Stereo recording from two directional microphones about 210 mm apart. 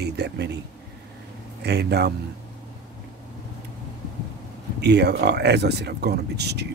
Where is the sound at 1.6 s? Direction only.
50° right (ahead or behind).